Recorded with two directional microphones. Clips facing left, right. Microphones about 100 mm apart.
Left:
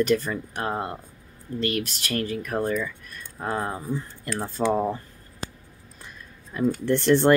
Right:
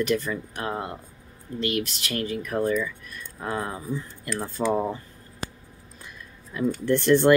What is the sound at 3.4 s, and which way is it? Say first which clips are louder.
Speech: left 2 dB; 35° left (ahead or behind).